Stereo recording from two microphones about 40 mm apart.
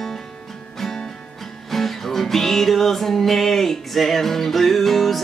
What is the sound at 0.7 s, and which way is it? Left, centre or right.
Music, centre.